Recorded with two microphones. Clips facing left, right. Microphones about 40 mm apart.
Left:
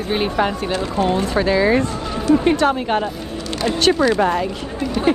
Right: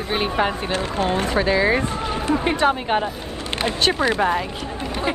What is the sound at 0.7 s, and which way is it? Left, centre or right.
Speech, right.